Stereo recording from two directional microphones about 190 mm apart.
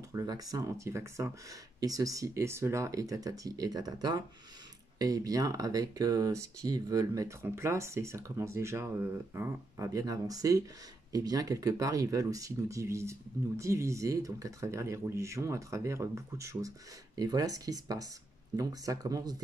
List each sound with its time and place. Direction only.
0.1 s speech: 20° right (ahead or behind)